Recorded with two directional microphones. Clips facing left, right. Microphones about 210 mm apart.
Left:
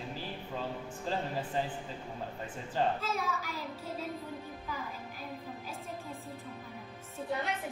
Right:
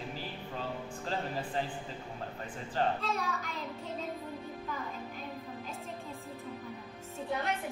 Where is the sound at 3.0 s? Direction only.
Centre (ahead or behind).